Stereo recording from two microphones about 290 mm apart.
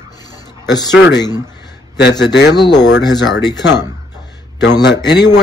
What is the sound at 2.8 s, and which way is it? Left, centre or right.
Speech, left.